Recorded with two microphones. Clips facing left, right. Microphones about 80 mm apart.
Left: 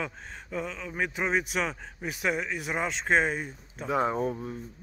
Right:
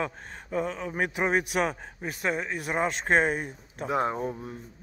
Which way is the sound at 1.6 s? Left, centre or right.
Centre.